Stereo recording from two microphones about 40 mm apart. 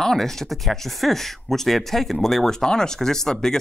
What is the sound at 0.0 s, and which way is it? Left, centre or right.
Speech, centre.